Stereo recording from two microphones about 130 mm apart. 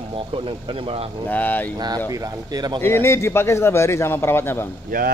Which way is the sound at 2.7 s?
20° left (ahead or behind).